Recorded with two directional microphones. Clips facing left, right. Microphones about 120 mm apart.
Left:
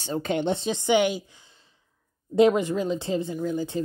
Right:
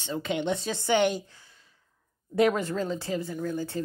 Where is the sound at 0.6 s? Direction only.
20° left (ahead or behind).